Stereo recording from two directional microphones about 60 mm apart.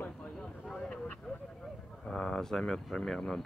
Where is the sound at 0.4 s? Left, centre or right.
Centre.